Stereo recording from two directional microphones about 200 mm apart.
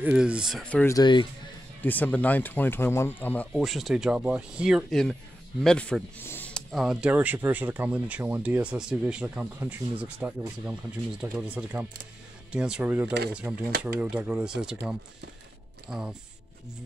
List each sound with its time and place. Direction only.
0.0 s speech: 5° right (ahead or behind)
0.9 s speech: 20° left (ahead or behind)
1.8 s speech: 10° left (ahead or behind)